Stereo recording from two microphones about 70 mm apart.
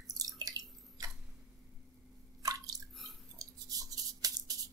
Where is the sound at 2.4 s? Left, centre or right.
Right.